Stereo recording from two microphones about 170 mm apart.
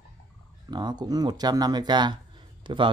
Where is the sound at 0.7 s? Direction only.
25° right (ahead or behind).